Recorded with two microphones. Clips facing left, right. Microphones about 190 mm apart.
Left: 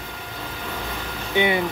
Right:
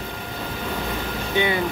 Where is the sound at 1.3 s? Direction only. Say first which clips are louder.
Left 2 dB; 20° left (ahead or behind).